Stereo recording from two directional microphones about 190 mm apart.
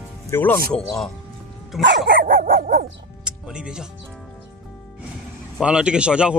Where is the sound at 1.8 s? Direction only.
60° right (ahead or behind).